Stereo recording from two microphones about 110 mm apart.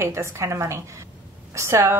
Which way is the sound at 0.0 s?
25° right (ahead or behind).